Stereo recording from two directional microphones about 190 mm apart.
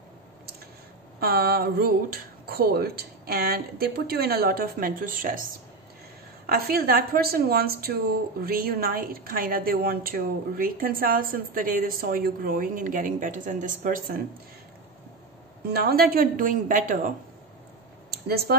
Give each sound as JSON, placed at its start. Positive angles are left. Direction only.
{"t": 1.2, "sound": "a woman's voice", "side_deg": -50}
{"t": 15.6, "sound": "a woman's voice", "side_deg": -55}
{"t": 18.1, "sound": "speech", "side_deg": -55}